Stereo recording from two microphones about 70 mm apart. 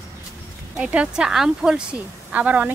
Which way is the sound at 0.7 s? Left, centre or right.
Centre.